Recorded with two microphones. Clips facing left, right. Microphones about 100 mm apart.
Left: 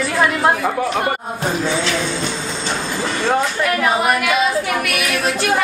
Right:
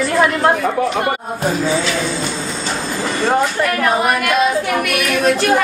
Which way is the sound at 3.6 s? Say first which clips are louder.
Right 1 dB; 5° left (ahead or behind).